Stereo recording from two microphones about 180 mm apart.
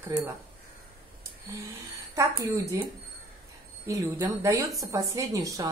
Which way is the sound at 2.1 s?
20° right (ahead or behind).